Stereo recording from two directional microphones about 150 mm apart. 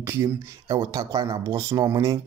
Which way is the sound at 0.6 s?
25° right (ahead or behind).